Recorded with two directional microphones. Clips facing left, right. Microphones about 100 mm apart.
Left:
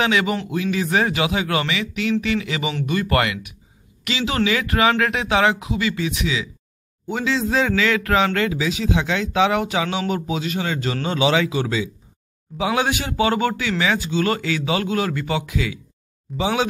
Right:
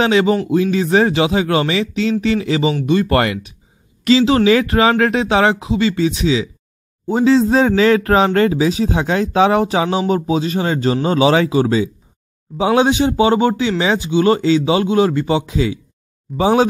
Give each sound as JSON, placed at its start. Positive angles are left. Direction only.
{"t": 0.0, "sound": "speech", "side_deg": -30}
{"t": 16.3, "sound": "speech", "side_deg": -40}